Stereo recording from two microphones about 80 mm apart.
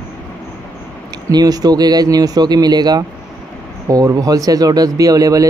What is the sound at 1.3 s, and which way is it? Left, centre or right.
Speech, right.